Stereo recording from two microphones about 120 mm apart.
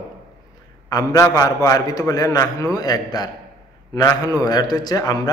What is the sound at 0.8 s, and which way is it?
A man's voice, 30° left (ahead or behind).